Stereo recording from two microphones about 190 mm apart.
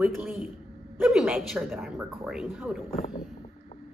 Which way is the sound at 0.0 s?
5° right (ahead or behind).